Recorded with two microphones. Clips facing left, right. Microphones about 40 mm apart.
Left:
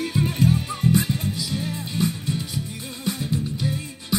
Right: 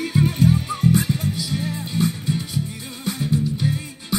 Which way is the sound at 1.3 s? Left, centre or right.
Right.